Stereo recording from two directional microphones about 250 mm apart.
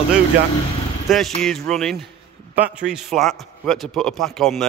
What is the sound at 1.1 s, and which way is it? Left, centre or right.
Speech, centre.